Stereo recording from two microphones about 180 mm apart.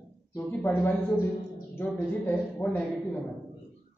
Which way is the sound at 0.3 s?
15° left (ahead or behind).